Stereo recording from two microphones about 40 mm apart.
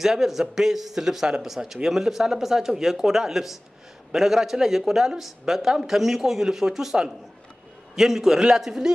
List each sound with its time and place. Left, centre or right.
0.0 s a man's voice: centre